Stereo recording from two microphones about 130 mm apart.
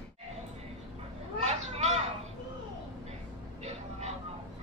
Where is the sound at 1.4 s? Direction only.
60° right (ahead or behind).